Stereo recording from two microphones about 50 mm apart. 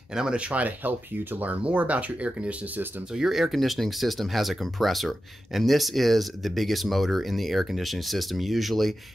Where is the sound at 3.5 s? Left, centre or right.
Centre.